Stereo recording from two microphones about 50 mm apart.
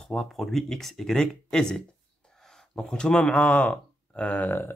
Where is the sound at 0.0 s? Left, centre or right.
Centre; by 4.5 s left.